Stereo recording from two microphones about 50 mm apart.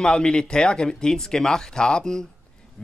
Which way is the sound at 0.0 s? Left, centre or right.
Centre.